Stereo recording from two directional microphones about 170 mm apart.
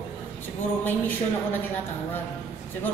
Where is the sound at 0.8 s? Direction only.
10° left (ahead or behind).